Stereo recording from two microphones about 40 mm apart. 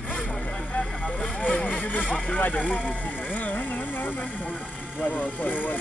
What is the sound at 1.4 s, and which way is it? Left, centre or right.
Vehicle, left.